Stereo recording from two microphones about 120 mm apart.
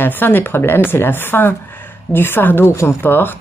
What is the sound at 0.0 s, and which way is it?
A woman's voice, 15° left (ahead or behind).